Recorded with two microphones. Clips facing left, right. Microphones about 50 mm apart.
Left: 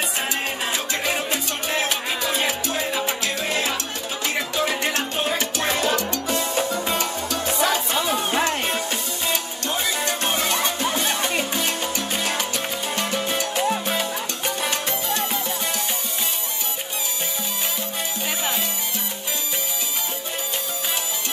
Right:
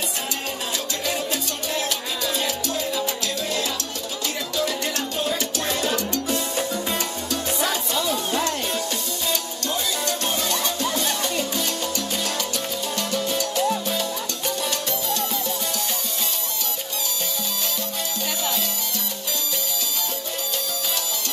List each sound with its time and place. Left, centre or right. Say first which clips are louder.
1.0 s salsa music: left 2 dB; left
4.6 s music: left 1 dB; left
5.4 s salsa music: left 2 dB; left
7.9 s music: left 2 dB; left
12.9 s salsa music: left 1 dB; left
14.6 s music: left 1 dB; left